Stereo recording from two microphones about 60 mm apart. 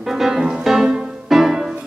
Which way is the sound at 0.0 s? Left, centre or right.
Centre.